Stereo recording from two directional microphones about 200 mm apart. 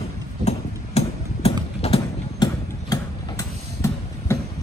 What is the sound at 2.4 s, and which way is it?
Tick-tock, 15° left (ahead or behind).